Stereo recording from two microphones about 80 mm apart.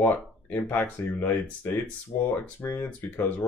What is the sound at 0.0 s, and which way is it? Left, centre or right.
Speech, centre.